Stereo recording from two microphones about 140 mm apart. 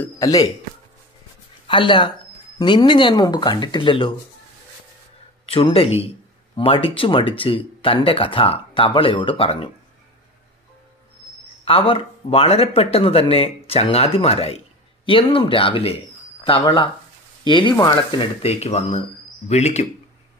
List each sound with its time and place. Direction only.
0.2 s speech: 25° left (ahead or behind)
1.7 s speech: 35° left (ahead or behind)
5.5 s speech: 40° left (ahead or behind)
11.6 s speech: 40° left (ahead or behind)